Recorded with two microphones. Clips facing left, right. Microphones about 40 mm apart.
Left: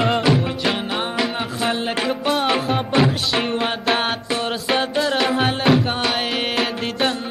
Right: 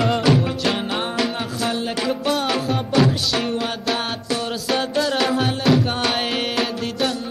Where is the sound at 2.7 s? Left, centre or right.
Left.